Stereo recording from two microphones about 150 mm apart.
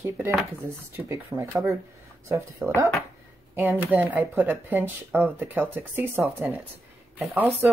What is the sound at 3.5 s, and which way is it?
Speech, 10° right (ahead or behind).